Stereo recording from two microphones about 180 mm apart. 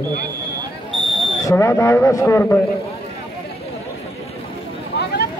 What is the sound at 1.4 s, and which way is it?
A man's voice, 15° left (ahead or behind).